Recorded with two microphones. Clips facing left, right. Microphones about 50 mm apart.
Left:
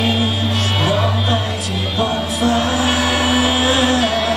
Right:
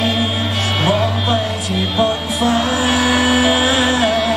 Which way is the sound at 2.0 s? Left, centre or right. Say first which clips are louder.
Right 1 dB; right.